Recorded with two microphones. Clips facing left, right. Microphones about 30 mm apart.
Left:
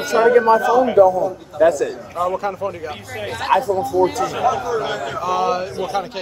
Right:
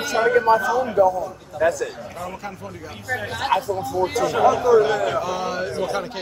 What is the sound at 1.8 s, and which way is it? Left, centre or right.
Speech, centre.